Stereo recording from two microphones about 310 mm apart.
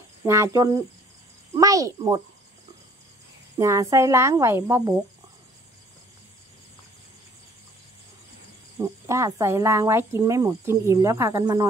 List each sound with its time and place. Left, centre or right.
0.2 s speech: centre
3.5 s speech: centre
8.7 s speech: centre